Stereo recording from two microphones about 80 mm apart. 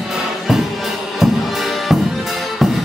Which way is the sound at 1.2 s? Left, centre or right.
Centre.